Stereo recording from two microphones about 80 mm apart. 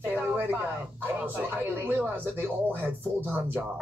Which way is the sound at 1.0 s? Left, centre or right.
Right.